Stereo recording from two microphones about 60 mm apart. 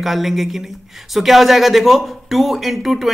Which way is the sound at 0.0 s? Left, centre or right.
Centre.